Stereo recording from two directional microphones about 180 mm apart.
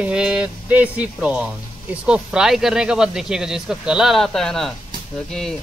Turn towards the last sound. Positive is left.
turn(degrees=5)  # may be behind; listen again after turning